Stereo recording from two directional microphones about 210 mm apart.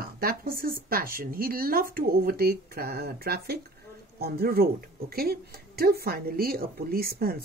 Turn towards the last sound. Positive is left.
turn(degrees=-45)  # may be behind; listen again after turning